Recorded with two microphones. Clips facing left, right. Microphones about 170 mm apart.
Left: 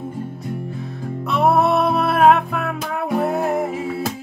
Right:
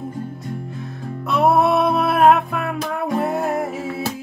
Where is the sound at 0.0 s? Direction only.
5° left (ahead or behind).